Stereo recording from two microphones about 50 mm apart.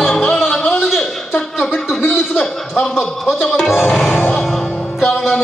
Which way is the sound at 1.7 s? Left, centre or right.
Centre.